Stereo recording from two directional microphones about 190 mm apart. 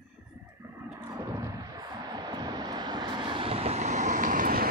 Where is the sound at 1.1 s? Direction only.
20° right (ahead or behind).